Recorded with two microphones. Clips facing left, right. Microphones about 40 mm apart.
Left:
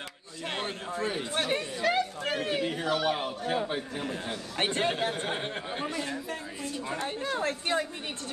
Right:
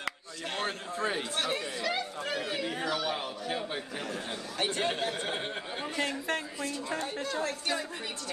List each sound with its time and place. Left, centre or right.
1.3 s speech: left
5.0 s speech: centre
5.9 s speech: right
7.3 s speech: left